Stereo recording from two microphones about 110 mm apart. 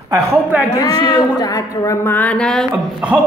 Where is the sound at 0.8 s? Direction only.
35° left (ahead or behind).